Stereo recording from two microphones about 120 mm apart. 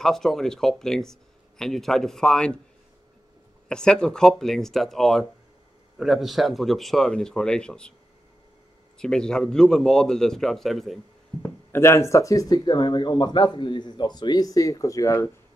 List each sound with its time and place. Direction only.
0.0 s speech: 5° left (ahead or behind)
3.6 s speech: 5° left (ahead or behind)
8.9 s speech: 5° left (ahead or behind)
11.4 s speech: 20° left (ahead or behind)